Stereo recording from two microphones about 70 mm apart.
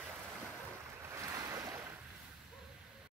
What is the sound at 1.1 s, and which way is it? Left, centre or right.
Waves, right.